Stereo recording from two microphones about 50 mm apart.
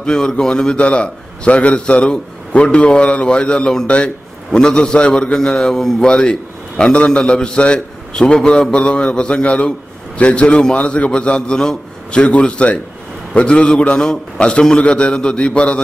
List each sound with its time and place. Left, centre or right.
0.0 s a man's voice: centre